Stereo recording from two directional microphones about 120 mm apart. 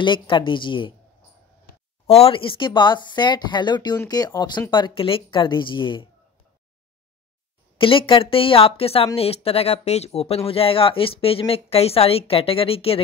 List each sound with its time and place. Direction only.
0.0 s speech: 40° left (ahead or behind)
2.0 s speech: 55° left (ahead or behind)
7.7 s speech: 45° left (ahead or behind)